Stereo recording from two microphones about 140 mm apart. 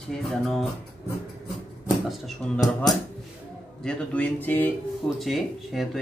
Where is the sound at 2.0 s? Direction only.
Centre (ahead or behind).